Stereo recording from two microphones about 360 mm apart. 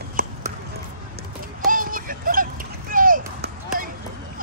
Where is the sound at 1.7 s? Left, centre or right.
Right.